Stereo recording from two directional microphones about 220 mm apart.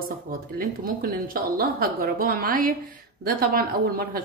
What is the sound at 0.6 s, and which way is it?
A woman's voice, 40° right (ahead or behind).